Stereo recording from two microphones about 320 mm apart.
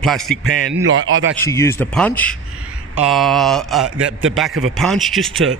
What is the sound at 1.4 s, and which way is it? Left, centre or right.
Speech, centre.